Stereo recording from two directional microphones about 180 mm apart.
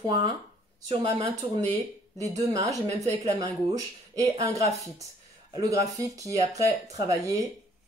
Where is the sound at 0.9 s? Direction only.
25° right (ahead or behind).